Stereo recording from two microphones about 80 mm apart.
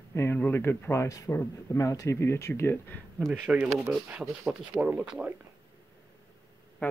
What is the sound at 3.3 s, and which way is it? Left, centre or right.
Speech, centre.